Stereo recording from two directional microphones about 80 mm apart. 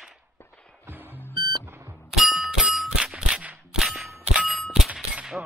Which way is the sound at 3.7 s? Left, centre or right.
Centre.